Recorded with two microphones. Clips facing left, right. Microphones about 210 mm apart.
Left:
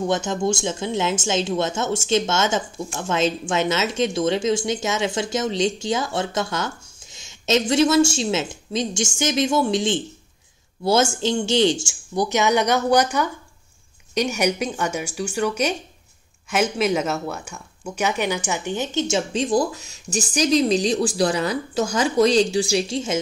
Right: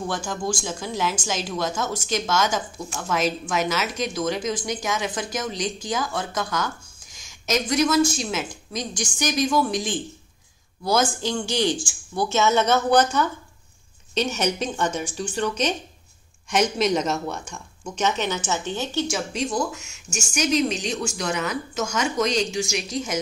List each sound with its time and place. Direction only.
0.1 s a woman's voice: 25° left (ahead or behind)